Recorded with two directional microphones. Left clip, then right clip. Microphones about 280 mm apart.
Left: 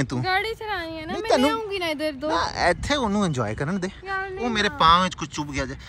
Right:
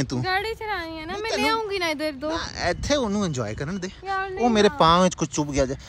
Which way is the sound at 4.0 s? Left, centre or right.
Right.